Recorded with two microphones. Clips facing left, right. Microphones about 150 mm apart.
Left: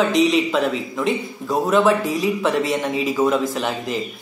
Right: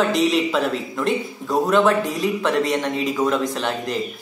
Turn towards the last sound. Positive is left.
turn(degrees=0)  # may be behind; listen again after turning